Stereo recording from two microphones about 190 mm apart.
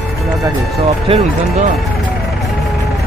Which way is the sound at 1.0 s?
35° right (ahead or behind).